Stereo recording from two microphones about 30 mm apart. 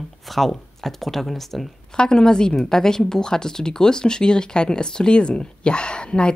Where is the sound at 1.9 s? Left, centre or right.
Left.